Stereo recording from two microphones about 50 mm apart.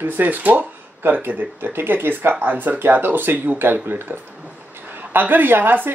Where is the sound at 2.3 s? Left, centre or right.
Right.